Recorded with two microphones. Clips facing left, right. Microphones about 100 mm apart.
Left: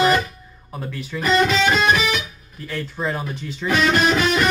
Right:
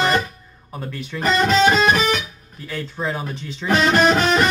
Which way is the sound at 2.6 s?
Centre (ahead or behind).